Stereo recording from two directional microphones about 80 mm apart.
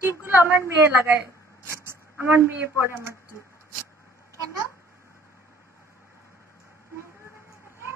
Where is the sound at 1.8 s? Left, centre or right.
Right.